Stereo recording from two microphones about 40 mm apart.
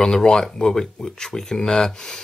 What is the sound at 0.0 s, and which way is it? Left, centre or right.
Speech, centre.